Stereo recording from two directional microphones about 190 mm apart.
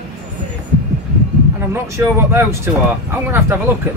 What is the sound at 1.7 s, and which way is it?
Speech, 15° right (ahead or behind).